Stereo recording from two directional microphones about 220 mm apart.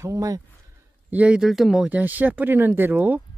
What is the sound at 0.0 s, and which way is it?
Speech, 15° right (ahead or behind).